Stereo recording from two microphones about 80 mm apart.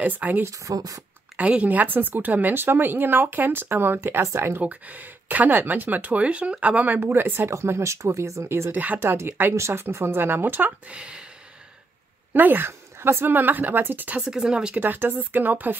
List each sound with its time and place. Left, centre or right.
0.2 s a woman's voice: right
0.5 s speech: right
1.3 s a woman's voice: centre; by 4.6 s right
4.6 s a woman's voice: centre; by 8.7 s right
8.7 s a woman's voice: centre
9.4 s a woman's voice: right
11.0 s speech: centre
12.4 s a woman's voice: right
14.2 s speech: centre
14.8 s a woman's voice: right